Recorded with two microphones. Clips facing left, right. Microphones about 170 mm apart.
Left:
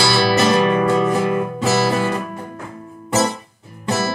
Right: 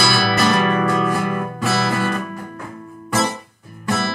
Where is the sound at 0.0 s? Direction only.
25° left (ahead or behind).